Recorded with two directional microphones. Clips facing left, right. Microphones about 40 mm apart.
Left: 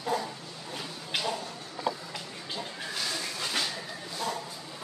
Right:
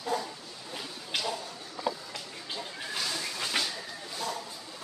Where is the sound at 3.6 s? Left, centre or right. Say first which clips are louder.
Even; centre.